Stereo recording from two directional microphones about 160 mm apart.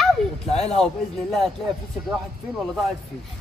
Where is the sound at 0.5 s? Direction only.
40° left (ahead or behind).